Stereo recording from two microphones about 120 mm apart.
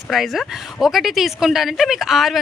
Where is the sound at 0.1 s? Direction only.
Centre (ahead or behind).